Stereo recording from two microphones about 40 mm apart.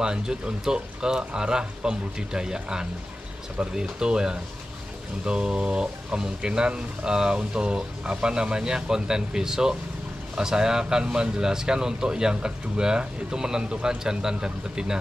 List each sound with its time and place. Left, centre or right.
0.0 s speech: centre